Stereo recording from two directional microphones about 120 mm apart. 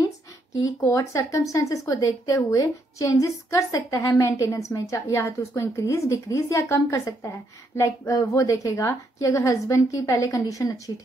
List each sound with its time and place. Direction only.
0.6 s a woman's voice: 25° left (ahead or behind)